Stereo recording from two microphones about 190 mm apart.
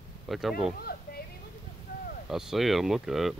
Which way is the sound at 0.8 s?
55° left (ahead or behind).